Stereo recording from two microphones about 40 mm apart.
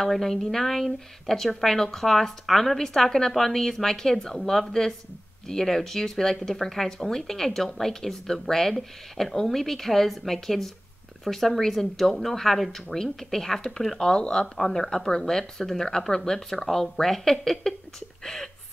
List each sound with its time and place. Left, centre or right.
0.0 s speech: centre